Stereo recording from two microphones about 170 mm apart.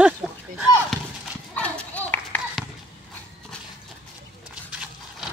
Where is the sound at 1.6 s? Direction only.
10° left (ahead or behind).